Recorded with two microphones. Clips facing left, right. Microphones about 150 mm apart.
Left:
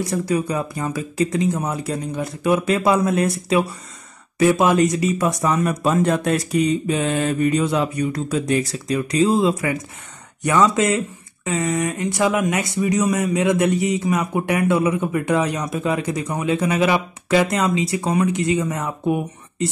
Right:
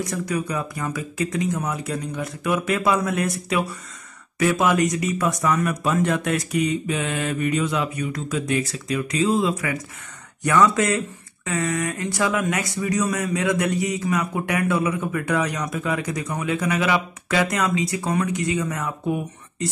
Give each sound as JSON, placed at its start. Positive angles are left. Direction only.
{"t": 0.0, "sound": "speech", "side_deg": 30}